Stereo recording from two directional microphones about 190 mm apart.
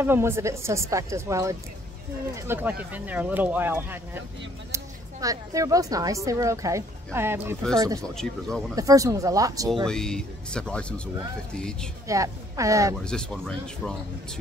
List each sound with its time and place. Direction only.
0.0 s a woman's voice: 15° right (ahead or behind)
8.1 s speech: 5° left (ahead or behind)
8.7 s a woman's voice: 20° right (ahead or behind)
9.8 s speech: 5° left (ahead or behind)
12.1 s a woman's voice: 15° right (ahead or behind)
13.0 s speech: 5° left (ahead or behind)